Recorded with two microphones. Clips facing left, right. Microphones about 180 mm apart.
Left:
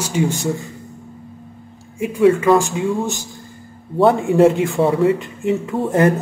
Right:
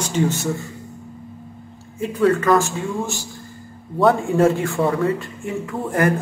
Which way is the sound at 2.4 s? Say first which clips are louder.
Left 3 dB; 15° left (ahead or behind).